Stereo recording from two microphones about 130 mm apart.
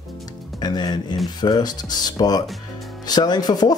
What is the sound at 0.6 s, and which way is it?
Speech, 30° left (ahead or behind).